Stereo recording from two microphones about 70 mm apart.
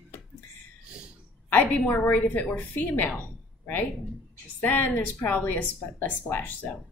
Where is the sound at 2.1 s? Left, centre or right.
Left.